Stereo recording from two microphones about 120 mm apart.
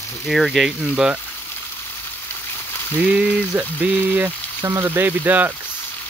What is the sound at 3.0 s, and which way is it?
Speech, 10° right (ahead or behind).